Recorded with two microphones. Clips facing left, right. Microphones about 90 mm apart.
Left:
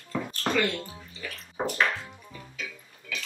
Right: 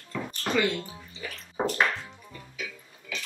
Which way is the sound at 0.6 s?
15° right (ahead or behind).